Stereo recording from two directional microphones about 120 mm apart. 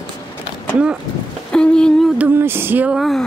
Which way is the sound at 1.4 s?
5° left (ahead or behind).